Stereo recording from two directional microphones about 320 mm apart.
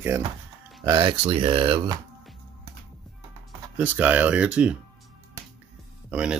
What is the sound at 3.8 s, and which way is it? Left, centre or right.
Speech, centre.